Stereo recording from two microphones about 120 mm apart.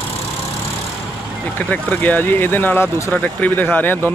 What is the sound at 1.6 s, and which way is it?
Speech, 15° left (ahead or behind).